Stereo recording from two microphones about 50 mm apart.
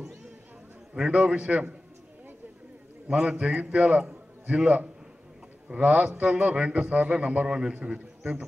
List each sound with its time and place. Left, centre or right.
0.9 s a man's voice: centre
1.3 s a man's voice: right
3.1 s a man's voice: centre